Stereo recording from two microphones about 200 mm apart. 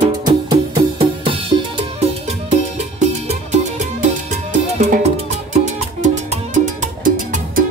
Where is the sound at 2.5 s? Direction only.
35° right (ahead or behind).